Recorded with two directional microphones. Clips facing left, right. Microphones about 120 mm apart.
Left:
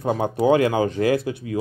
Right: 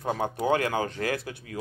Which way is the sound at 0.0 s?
20° left (ahead or behind).